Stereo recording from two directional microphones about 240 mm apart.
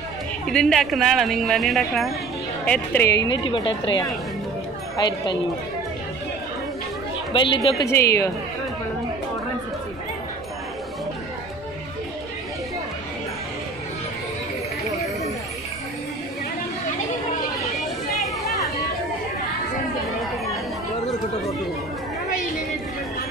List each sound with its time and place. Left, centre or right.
0.5 s a woman's voice: centre
7.3 s a woman's voice: left
18.1 s chatter: centre